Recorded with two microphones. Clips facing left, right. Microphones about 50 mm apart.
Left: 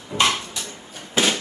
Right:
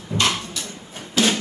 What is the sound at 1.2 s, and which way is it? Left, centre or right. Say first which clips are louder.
Music: right 1 dB; left.